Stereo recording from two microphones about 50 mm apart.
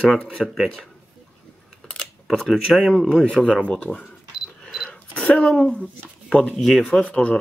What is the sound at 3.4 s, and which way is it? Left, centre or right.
Speech, centre.